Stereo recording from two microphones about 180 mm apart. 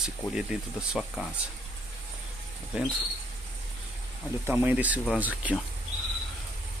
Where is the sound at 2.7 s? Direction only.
5° right (ahead or behind).